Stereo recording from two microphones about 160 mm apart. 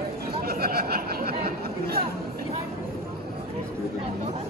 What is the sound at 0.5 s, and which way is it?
Chatter, 70° right (ahead or behind).